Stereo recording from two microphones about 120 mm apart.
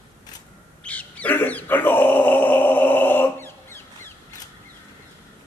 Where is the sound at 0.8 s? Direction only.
10° left (ahead or behind).